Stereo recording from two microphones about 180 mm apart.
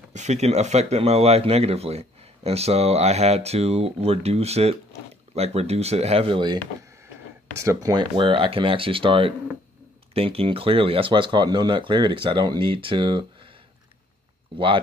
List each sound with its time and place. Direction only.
0.1 s speech: 40° right (ahead or behind)